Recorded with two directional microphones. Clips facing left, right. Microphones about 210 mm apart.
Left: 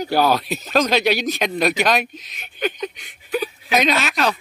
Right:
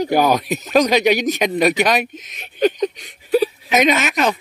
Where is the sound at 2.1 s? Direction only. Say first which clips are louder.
Right 3 dB; 40° right (ahead or behind).